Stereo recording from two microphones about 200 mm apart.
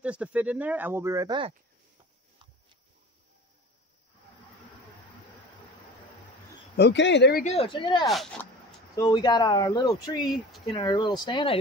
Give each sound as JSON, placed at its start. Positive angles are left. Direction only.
{"t": 0.0, "sound": "speech", "side_deg": -5}
{"t": 6.8, "sound": "speech", "side_deg": 65}
{"t": 7.4, "sound": "speech", "side_deg": 30}
{"t": 8.1, "sound": "speech", "side_deg": 0}
{"t": 8.9, "sound": "speech", "side_deg": 20}
{"t": 10.2, "sound": "speech", "side_deg": 0}
{"t": 10.7, "sound": "speech", "side_deg": 20}